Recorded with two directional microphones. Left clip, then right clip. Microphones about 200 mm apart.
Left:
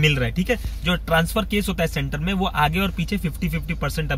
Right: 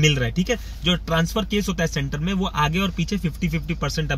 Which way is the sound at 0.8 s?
15° right (ahead or behind).